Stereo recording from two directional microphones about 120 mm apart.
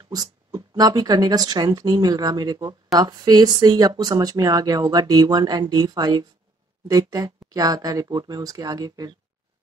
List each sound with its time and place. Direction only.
0.1 s speech: 35° right (ahead or behind)